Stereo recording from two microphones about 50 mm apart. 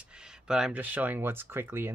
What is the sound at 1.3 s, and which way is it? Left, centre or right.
Speech, right.